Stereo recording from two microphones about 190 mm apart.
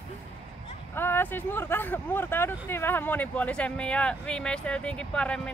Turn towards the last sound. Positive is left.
turn(degrees=5)  # may be behind; listen again after turning